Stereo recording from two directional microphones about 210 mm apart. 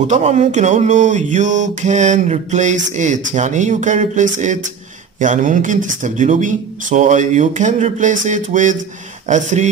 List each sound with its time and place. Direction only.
0.1 s mantra: 35° right (ahead or behind)